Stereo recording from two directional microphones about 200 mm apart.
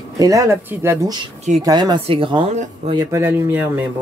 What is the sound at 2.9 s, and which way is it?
Speech, 15° right (ahead or behind).